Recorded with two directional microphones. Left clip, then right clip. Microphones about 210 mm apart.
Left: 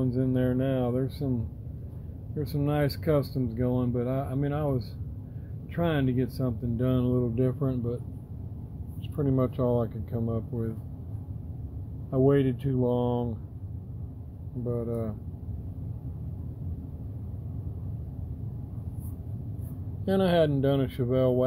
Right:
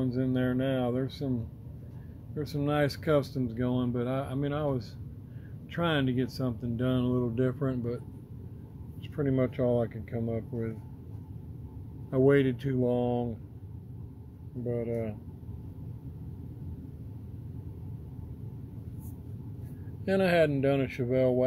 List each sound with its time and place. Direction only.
0.0 s speech: 5° right (ahead or behind)
2.3 s speech: centre (ahead or behind)
9.1 s speech: 10° right (ahead or behind)
12.1 s speech: 15° right (ahead or behind)
14.7 s speech: 15° right (ahead or behind)
20.1 s speech: 5° right (ahead or behind)